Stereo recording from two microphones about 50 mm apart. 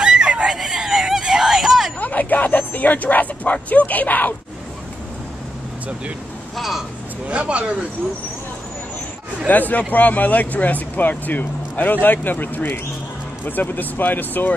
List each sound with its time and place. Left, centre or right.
0.0 s fowl: centre
0.6 s a sound: centre
2.0 s a sound: left
3.7 s speech: left
6.5 s speech: centre
7.2 s speech: right
9.5 s speech: left